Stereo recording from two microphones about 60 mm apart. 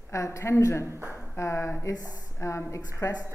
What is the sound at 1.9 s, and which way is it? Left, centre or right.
Speech, left.